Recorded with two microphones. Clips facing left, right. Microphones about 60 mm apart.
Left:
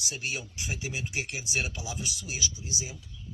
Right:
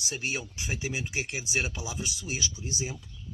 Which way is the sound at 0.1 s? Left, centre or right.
Right.